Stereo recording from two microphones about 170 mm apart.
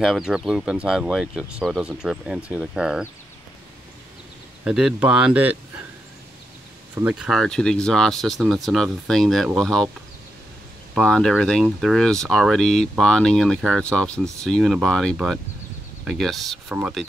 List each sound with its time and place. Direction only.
0.0 s speech: 5° right (ahead or behind)
4.6 s speech: 5° right (ahead or behind)
7.0 s speech: 5° right (ahead or behind)
11.0 s speech: 5° left (ahead or behind)